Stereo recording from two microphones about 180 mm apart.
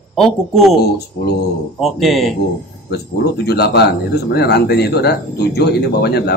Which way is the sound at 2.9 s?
60° left (ahead or behind).